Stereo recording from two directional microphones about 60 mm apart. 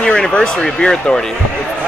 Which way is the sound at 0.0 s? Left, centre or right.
Centre.